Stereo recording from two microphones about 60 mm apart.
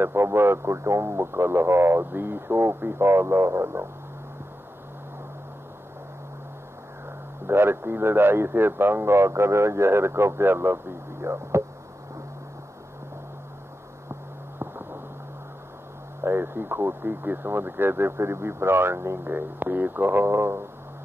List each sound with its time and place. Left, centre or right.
0.0 s a man's voice: right
7.4 s a man's voice: right
14.6 s a sound: right
16.2 s speech: right